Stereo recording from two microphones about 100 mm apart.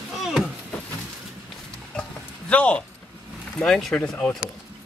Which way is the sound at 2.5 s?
15° left (ahead or behind).